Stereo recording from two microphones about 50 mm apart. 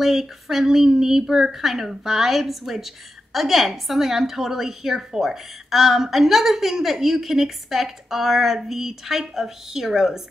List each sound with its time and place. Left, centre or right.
0.0 s a woman's voice: centre